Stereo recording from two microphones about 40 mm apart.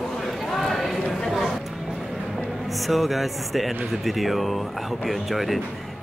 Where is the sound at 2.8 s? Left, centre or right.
Centre.